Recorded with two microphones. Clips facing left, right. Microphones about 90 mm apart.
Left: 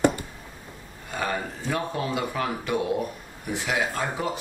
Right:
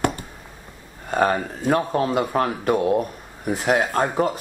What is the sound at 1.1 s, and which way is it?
Speech, 45° right (ahead or behind).